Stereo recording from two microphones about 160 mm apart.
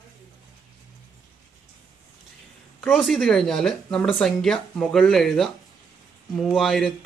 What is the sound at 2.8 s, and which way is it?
Speech, centre (ahead or behind).